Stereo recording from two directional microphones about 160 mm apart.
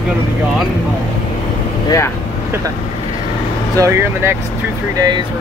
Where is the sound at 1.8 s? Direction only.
20° left (ahead or behind).